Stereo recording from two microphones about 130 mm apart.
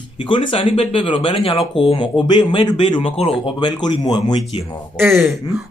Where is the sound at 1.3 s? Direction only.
50° left (ahead or behind).